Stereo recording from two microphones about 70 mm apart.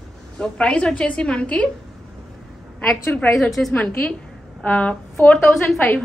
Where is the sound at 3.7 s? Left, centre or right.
Left.